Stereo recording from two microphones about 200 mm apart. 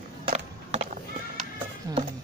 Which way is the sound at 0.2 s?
25° right (ahead or behind).